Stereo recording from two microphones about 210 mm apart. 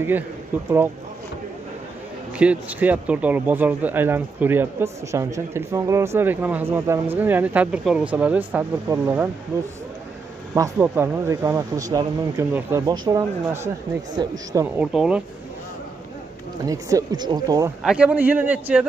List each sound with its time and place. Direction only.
2.3 s speech: 5° right (ahead or behind)
10.5 s speech: 10° right (ahead or behind)
14.9 s speech: 5° right (ahead or behind)
16.6 s speech: 15° right (ahead or behind)
17.8 s speech: 5° right (ahead or behind)